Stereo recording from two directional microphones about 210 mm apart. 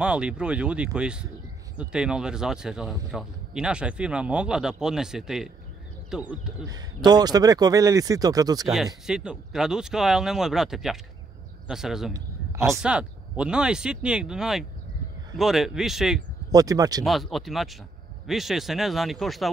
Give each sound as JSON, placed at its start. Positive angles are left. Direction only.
{"t": 0.0, "sound": "speech", "side_deg": -5}
{"t": 7.1, "sound": "speech", "side_deg": -20}
{"t": 8.7, "sound": "speech", "side_deg": 0}
{"t": 12.1, "sound": "speech", "side_deg": -10}
{"t": 16.5, "sound": "speech", "side_deg": -15}
{"t": 17.0, "sound": "speech", "side_deg": 0}